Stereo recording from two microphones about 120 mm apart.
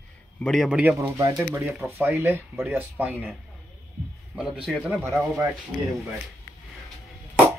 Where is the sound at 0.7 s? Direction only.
10° right (ahead or behind).